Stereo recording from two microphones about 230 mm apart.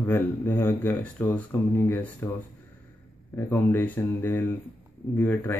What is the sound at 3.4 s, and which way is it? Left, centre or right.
Speech, centre.